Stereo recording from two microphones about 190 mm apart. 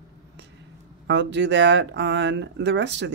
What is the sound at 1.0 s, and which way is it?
Speech, 65° right (ahead or behind).